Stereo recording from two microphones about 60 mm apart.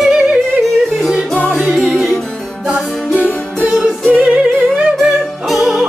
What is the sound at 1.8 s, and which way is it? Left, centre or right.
Music, centre.